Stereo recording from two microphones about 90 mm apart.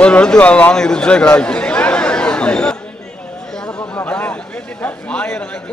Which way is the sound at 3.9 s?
20° left (ahead or behind).